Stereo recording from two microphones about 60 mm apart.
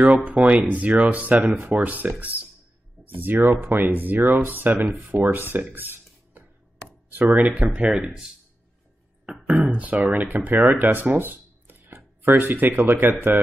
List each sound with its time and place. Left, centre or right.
0.0 s speech: right
5.8 s a sound: right
7.2 s speech: right
9.5 s speech: right